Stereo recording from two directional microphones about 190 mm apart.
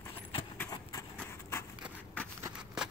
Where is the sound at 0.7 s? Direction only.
20° left (ahead or behind).